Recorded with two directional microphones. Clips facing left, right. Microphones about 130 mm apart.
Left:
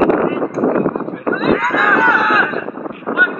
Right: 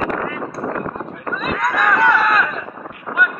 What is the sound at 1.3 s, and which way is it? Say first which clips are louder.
Run: left 6 dB; centre (ahead or behind).